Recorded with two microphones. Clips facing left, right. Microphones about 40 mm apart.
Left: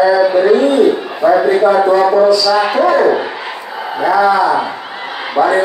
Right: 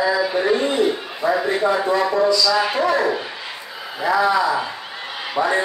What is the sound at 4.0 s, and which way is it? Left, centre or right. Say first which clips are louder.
Speech: left 6 dB; left.